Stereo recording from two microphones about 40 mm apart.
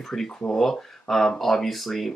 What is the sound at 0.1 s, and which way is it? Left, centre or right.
Speech, centre.